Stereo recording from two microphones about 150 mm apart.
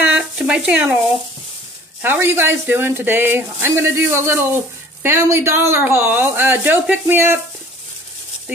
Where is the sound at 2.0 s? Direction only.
15° right (ahead or behind).